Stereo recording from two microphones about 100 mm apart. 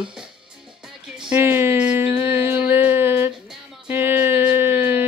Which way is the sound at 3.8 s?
20° right (ahead or behind).